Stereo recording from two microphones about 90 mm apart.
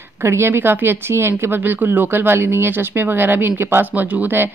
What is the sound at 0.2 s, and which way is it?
Speech, 30° right (ahead or behind).